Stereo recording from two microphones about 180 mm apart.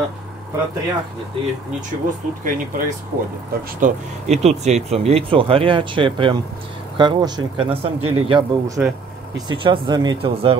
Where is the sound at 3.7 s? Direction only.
45° right (ahead or behind).